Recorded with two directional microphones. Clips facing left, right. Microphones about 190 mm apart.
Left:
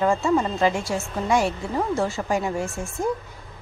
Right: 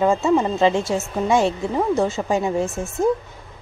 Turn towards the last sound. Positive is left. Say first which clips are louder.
# right 6 dB
turn(degrees=-20)  # may be behind; listen again after turning